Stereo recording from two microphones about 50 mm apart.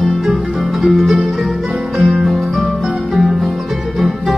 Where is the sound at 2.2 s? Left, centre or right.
Centre.